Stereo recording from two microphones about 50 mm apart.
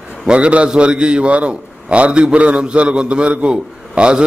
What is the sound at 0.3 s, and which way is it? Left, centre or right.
A man's voice, right.